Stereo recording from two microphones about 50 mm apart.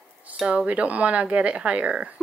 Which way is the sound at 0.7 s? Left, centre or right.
Right.